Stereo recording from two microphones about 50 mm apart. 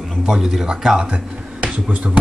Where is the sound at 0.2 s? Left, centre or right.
Centre.